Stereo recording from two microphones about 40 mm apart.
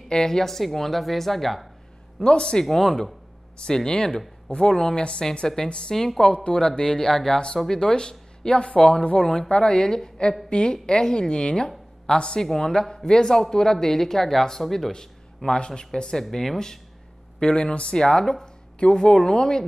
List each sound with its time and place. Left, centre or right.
0.1 s speech: centre
2.2 s speech: left
2.6 s speech: centre
3.5 s speech: left
5.9 s speech: centre
6.2 s speech: left; by 14.9 s centre
14.9 s speech: centre